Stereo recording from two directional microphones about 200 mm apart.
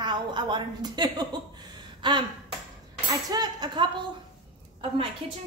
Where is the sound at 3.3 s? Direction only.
20° right (ahead or behind).